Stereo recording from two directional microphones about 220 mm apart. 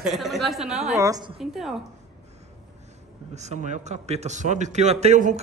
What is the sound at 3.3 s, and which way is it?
A man's voice, 30° right (ahead or behind).